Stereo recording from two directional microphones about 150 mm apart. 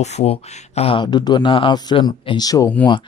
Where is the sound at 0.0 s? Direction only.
45° left (ahead or behind); by 2.7 s 25° left (ahead or behind).